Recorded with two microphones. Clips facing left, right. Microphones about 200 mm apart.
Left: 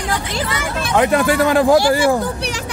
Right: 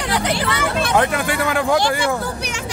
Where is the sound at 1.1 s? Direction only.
40° left (ahead or behind).